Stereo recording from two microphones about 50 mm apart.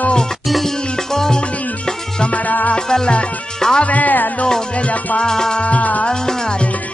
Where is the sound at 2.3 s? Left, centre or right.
Left.